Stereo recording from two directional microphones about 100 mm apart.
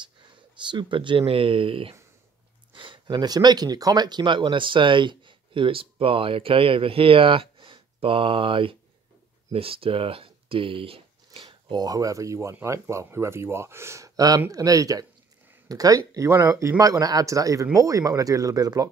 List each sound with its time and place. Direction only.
0.6 s speech: 50° right (ahead or behind)
2.7 s speech: 55° right (ahead or behind)
11.7 s speech: 40° right (ahead or behind)